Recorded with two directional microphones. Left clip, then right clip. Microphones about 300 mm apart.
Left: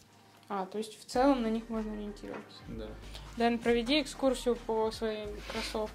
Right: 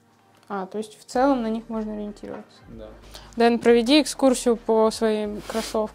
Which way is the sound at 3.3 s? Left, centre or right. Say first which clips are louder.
Right 12 dB; right.